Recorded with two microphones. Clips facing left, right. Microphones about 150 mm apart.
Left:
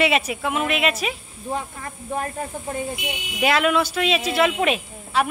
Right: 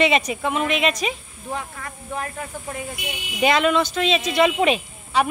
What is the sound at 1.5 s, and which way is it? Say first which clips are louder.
Speech: left 1 dB; 35° left (ahead or behind).